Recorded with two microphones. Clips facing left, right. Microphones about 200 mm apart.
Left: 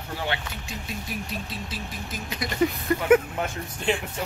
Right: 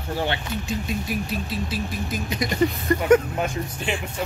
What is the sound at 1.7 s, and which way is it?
Speech, 15° right (ahead or behind).